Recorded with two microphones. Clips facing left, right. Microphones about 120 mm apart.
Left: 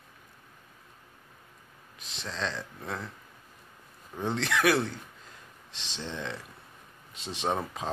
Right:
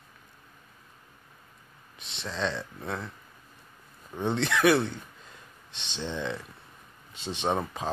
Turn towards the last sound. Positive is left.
turn(degrees=0)  # may be behind; listen again after turning